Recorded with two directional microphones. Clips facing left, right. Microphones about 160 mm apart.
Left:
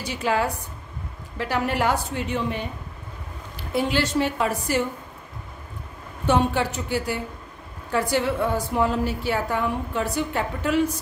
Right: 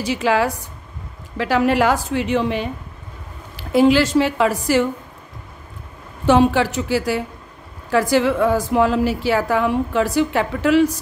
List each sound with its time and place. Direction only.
0.0 s a woman's voice: 90° right
6.2 s a woman's voice: 90° right